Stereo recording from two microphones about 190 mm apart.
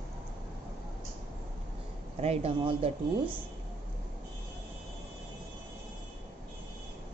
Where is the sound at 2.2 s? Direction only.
30° right (ahead or behind).